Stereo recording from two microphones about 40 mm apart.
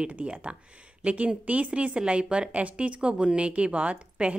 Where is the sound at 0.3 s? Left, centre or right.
Right.